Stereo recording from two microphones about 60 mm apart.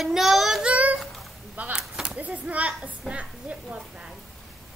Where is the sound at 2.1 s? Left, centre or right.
Right.